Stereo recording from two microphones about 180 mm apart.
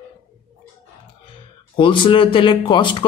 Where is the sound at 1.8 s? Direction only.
30° left (ahead or behind).